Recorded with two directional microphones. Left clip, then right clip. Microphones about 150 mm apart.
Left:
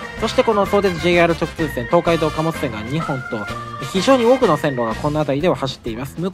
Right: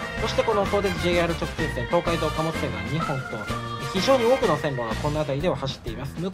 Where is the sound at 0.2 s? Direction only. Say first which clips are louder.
Left 7 dB; 25° left (ahead or behind).